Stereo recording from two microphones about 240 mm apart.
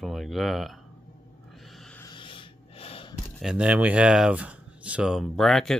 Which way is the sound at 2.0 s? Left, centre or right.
Centre.